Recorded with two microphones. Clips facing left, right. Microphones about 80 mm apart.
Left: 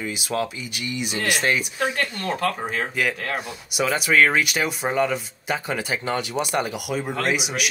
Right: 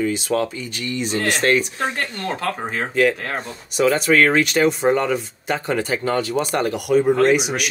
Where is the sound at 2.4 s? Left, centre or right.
Right.